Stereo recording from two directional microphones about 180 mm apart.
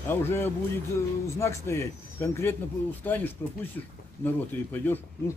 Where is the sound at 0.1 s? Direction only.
15° left (ahead or behind).